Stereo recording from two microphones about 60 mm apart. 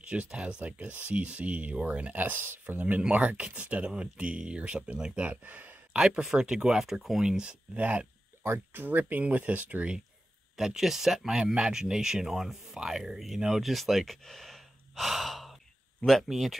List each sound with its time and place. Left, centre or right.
0.0 s speech: centre
2.1 s speech: right
5.9 s speech: centre
8.5 s speech: right
10.5 s speech: centre